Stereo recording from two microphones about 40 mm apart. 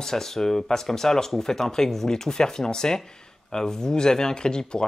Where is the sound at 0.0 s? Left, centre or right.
Centre.